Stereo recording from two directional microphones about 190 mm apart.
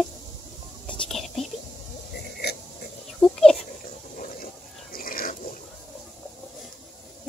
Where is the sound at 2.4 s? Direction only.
60° left (ahead or behind).